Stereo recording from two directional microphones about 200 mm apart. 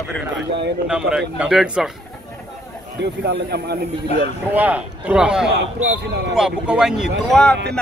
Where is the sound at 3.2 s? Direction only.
55° right (ahead or behind).